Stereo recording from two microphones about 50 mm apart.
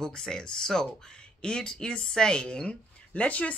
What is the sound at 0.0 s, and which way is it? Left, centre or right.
Speech, centre.